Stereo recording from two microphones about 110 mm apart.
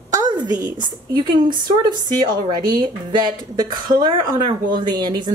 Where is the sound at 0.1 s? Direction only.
35° right (ahead or behind).